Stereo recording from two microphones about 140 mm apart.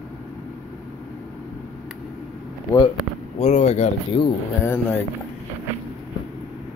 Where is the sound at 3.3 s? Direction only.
55° left (ahead or behind).